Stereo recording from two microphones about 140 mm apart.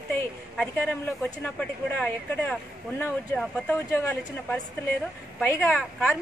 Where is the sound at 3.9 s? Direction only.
15° left (ahead or behind).